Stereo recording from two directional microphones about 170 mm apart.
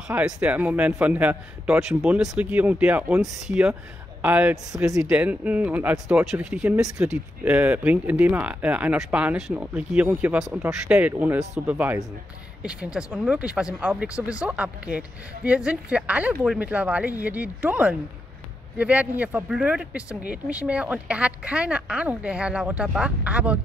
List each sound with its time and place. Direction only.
0.1 s speech: 10° right (ahead or behind)